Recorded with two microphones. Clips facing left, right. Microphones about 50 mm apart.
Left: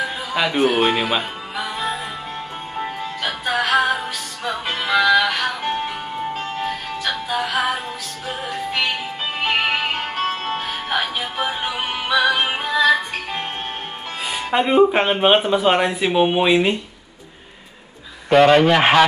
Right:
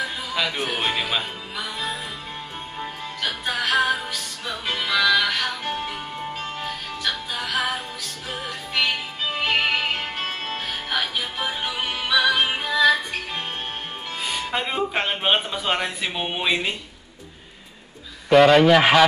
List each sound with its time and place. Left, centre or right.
0.0 s music: centre
6.1 s music: centre
14.2 s speech: centre
18.3 s a man's voice: centre